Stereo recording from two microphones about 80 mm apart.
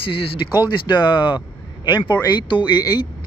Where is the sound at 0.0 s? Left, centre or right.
Left.